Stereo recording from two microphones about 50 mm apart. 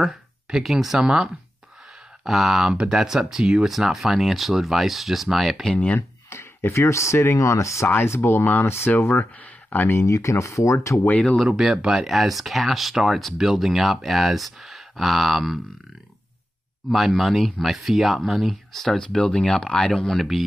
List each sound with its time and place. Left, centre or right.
0.0 s speech: centre
5.9 s a sound: left
6.7 s speech: left
7.4 s speech: left
8.0 s speech: left
9.1 s speech: left
9.8 s speech: left
11.1 s speech: left
11.4 s speech: centre
11.8 s speech: centre
16.9 s speech: centre
19.1 s speech: centre